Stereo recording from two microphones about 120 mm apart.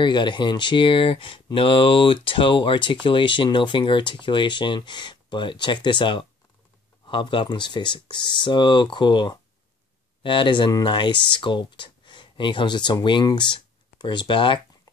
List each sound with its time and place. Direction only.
0.0 s speech: 40° left (ahead or behind)